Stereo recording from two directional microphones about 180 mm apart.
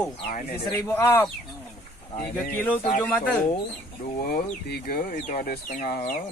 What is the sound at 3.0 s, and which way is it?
Speech, 10° left (ahead or behind).